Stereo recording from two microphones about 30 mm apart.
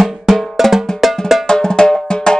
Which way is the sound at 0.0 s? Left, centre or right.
Centre.